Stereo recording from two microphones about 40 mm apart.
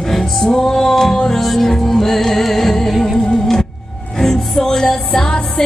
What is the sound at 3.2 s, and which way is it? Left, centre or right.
Music, centre.